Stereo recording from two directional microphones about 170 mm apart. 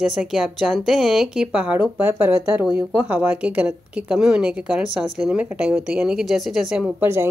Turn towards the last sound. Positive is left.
turn(degrees=-5)  # may be behind; listen again after turning